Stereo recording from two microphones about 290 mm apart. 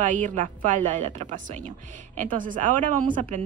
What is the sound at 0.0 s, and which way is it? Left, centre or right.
Speech, right.